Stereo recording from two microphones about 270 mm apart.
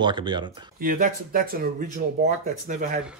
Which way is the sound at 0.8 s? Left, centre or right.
Right.